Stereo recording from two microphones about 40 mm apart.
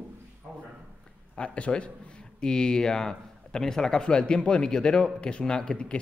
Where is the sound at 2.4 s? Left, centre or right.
Centre.